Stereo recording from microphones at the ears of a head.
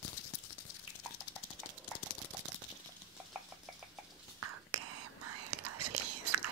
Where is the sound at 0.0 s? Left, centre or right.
Left.